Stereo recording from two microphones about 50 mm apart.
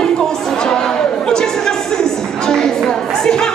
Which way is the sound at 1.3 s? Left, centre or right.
Centre.